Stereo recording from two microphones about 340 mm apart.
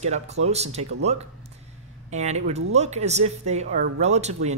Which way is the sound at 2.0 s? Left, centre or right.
Centre.